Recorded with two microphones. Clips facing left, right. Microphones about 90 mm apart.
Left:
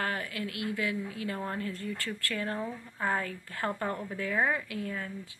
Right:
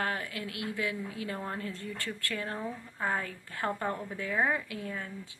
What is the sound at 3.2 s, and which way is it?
A woman's voice, 20° right (ahead or behind).